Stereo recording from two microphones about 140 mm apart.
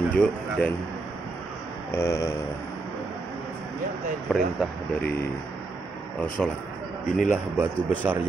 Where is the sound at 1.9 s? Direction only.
20° left (ahead or behind).